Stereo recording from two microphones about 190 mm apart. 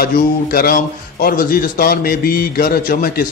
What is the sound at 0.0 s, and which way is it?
A man's voice, 50° left (ahead or behind).